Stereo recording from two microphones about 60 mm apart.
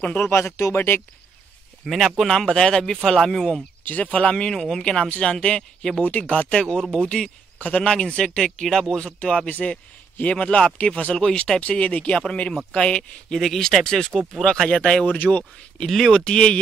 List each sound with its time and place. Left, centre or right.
0.3 s speech: left
0.7 s speech: left
1.9 s speech: centre
3.8 s speech: left
6.0 s speech: left; by 9.0 s centre
9.0 s speech: centre
11.6 s speech: left
13.4 s speech: centre
15.1 s speech: left
15.8 s speech: centre